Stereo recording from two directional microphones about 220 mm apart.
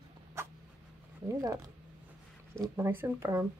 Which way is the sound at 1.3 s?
15° right (ahead or behind).